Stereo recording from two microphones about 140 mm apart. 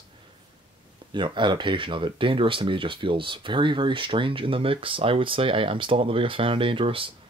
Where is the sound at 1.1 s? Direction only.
35° right (ahead or behind).